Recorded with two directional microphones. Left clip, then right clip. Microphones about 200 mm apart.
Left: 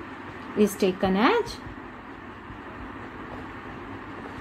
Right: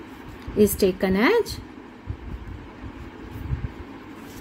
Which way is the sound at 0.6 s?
35° right (ahead or behind).